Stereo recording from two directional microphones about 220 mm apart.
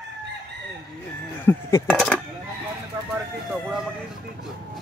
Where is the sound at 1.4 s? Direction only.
10° left (ahead or behind).